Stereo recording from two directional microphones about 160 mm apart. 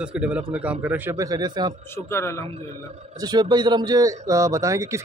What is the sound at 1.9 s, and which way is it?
Speech, 15° left (ahead or behind).